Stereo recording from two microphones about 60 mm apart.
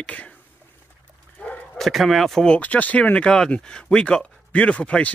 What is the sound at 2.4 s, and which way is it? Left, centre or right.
Speech, left.